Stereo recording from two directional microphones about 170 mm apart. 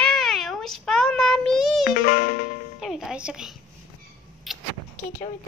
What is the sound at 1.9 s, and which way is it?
Music, 55° left (ahead or behind).